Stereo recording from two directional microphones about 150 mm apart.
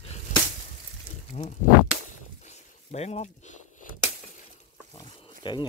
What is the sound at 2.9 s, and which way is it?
Speech, 45° left (ahead or behind).